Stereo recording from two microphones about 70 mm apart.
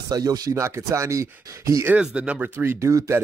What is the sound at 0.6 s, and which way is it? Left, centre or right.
Speech, right.